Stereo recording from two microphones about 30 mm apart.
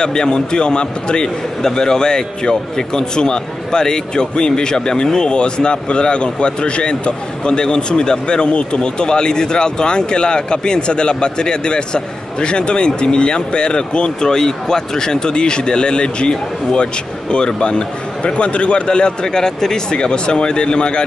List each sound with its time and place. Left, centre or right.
0.0 s a man's voice: left
19.2 s a man's voice: left
20.0 s a man's voice: left